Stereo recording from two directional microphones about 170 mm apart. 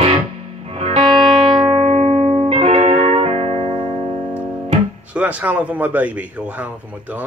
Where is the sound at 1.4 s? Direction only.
30° right (ahead or behind).